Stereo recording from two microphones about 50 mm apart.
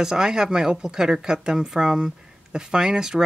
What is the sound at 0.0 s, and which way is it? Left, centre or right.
A woman's voice, centre.